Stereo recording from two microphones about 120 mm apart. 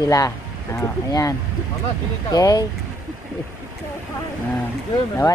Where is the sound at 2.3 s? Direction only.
30° left (ahead or behind).